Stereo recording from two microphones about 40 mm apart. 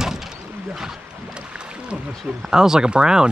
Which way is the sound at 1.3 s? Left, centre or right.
Right.